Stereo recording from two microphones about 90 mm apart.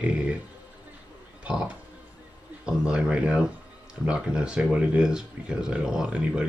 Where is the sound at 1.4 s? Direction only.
15° right (ahead or behind).